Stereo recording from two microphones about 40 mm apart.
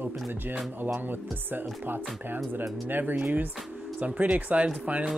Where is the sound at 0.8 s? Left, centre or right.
Right.